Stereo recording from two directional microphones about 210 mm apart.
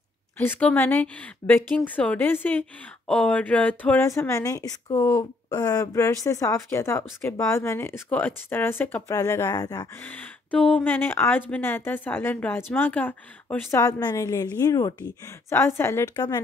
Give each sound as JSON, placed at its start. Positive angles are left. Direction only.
{"t": 0.4, "sound": "speech", "side_deg": 5}